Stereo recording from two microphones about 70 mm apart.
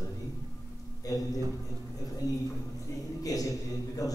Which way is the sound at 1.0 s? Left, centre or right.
Left.